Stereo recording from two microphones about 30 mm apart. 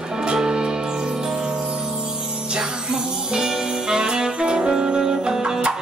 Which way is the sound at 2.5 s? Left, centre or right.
Right.